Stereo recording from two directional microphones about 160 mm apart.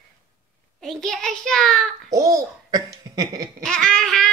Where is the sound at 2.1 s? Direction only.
20° right (ahead or behind).